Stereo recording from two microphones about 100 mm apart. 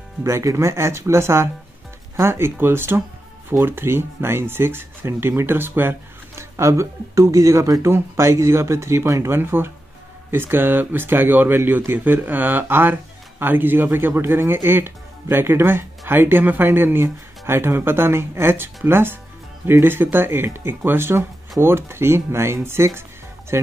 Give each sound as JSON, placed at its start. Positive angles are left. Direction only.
{"t": 0.2, "sound": "speech", "side_deg": -30}